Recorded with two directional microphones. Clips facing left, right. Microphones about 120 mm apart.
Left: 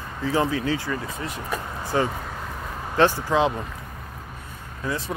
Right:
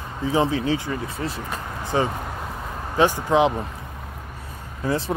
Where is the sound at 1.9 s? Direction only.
20° right (ahead or behind).